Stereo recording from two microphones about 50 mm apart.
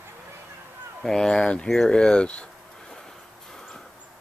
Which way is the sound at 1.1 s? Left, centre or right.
Centre.